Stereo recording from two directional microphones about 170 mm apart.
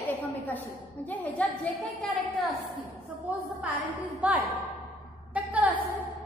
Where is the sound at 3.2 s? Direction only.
10° right (ahead or behind).